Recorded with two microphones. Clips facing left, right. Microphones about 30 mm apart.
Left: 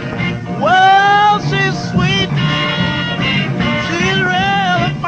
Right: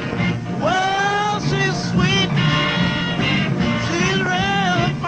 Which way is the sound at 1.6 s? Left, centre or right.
Centre.